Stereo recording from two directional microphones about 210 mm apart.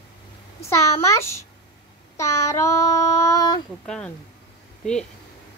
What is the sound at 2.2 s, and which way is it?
Child singing, 15° left (ahead or behind).